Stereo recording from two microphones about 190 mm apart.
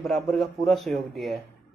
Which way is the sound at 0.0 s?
Centre (ahead or behind).